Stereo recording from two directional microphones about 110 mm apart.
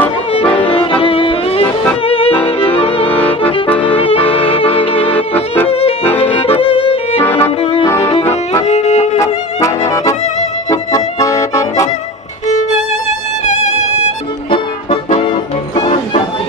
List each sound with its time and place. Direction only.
0.7 s violin: 55° left (ahead or behind)
2.0 s music: 60° left (ahead or behind)
3.1 s music: 15° left (ahead or behind)
3.8 s music: 55° left (ahead or behind)
5.1 s music: 15° left (ahead or behind)
5.7 s accordion: 60° left (ahead or behind)
6.2 s violin: 60° left (ahead or behind)
7.2 s music: 20° left (ahead or behind)
8.1 s music: 75° left (ahead or behind)
8.6 s music: 90° left
9.2 s music: 30° left (ahead or behind)
15.2 s music: 45° left (ahead or behind)